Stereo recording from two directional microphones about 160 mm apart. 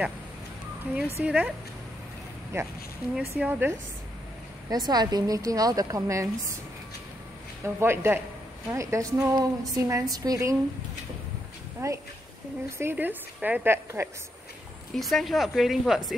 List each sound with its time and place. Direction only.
0.9 s a woman's voice: 10° right (ahead or behind)
3.2 s a woman's voice: 10° right (ahead or behind)
4.6 s a woman's voice: 25° right (ahead or behind)
7.6 s a woman's voice: 15° right (ahead or behind)
11.8 s a woman's voice: 20° right (ahead or behind)
15.0 s speech: centre (ahead or behind)